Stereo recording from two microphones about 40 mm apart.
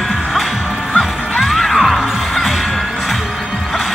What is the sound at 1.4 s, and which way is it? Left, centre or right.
Music, centre.